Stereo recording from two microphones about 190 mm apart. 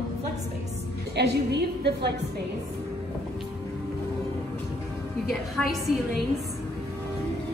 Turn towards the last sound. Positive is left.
turn(degrees=0)  # may be behind; listen again after turning